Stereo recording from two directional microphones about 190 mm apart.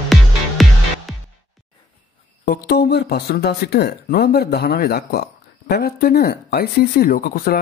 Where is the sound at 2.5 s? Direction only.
55° left (ahead or behind).